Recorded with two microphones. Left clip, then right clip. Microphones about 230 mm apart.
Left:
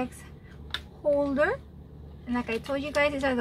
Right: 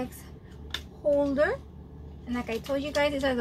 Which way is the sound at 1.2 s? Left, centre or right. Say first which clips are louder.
Even; centre.